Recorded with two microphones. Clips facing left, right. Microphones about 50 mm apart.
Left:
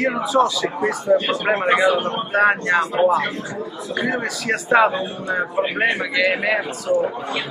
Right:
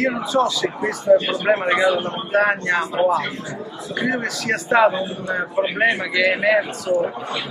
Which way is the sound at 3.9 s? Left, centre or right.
Centre.